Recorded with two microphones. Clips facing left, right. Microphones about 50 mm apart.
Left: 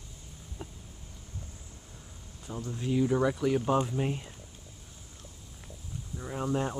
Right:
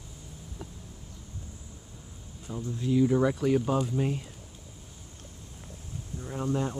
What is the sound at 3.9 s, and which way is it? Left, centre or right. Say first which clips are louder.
Speech: right 2 dB; centre.